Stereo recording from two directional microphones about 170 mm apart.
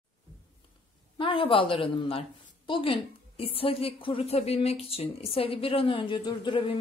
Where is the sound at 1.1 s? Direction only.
30° left (ahead or behind).